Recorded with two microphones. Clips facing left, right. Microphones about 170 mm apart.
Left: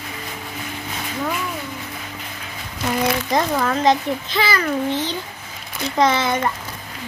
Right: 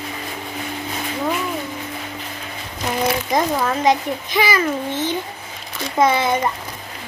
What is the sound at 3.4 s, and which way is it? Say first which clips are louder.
A child's voice: even; 10° right (ahead or behind).